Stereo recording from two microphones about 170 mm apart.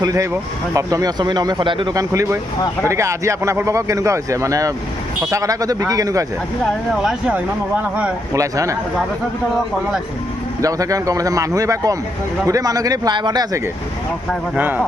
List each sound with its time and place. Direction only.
0.0 s speech: 20° right (ahead or behind)
6.6 s speech: centre (ahead or behind)
8.4 s speech: 20° right (ahead or behind)
10.6 s speech: 20° right (ahead or behind)
14.5 s speech: 10° right (ahead or behind)